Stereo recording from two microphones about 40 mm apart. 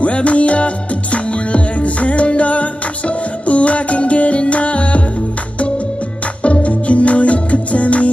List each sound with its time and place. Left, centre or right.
0.0 s music: left
6.4 s music: left